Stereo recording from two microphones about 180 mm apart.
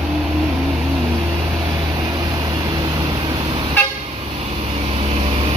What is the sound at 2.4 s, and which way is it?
Vehicle, 20° right (ahead or behind).